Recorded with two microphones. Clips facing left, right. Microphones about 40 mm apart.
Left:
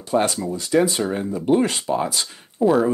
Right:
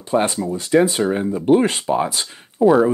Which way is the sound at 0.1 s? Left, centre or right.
Right.